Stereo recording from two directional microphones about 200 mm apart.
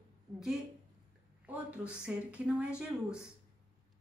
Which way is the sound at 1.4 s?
5° right (ahead or behind).